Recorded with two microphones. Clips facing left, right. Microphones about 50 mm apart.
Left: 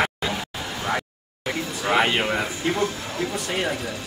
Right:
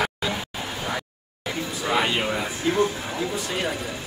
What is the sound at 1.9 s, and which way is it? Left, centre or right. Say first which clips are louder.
Speech: left 3 dB; left.